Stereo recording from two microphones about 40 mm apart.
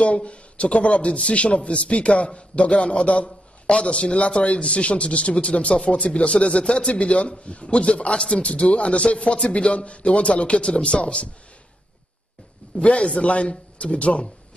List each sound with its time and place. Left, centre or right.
0.0 s a man's voice: left
12.7 s a man's voice: left